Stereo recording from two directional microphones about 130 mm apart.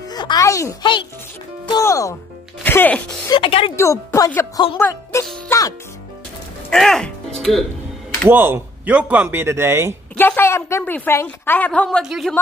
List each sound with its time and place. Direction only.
0.1 s a child's voice: 30° left (ahead or behind)
2.6 s a woman's voice: 15° left (ahead or behind)
3.3 s a woman's voice: 40° left (ahead or behind)
3.7 s speech: 20° left (ahead or behind)
6.7 s music: 5° left (ahead or behind)
8.3 s speech: 15° right (ahead or behind)
10.1 s a woman's voice: 15° left (ahead or behind)
12.0 s a woman's voice: 5° right (ahead or behind)